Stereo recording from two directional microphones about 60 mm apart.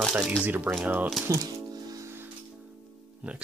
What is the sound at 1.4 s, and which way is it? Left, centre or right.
Music, right.